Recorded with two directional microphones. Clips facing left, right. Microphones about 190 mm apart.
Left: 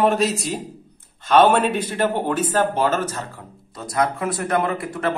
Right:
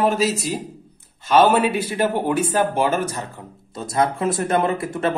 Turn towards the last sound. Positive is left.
turn(degrees=-25)  # may be behind; listen again after turning